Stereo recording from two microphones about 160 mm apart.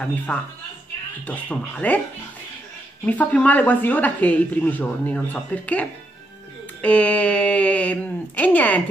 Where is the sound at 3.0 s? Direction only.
10° left (ahead or behind).